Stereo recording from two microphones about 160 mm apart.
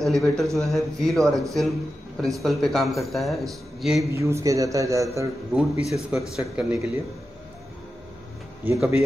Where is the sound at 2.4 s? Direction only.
Centre (ahead or behind).